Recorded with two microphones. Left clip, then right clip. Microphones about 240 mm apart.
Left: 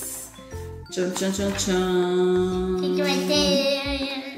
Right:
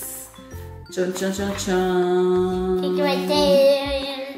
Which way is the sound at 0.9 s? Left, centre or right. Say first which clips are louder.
Right 2 dB; centre.